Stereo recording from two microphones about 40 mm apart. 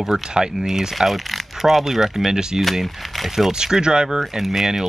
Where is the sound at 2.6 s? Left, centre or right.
Centre.